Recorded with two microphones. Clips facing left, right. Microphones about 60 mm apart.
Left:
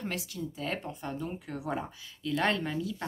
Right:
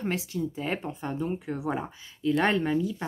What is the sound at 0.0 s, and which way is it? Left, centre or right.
Speech, right.